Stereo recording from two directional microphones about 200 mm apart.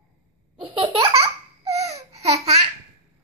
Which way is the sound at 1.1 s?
30° right (ahead or behind).